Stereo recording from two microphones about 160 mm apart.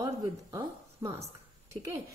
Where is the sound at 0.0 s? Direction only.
20° right (ahead or behind).